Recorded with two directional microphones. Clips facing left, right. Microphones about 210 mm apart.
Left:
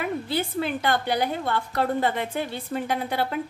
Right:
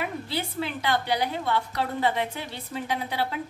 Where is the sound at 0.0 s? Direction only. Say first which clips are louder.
Left 4 dB; 50° left (ahead or behind).